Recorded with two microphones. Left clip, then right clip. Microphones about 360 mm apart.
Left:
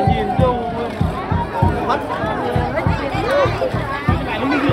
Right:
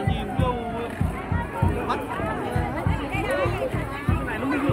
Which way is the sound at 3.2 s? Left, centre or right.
Left.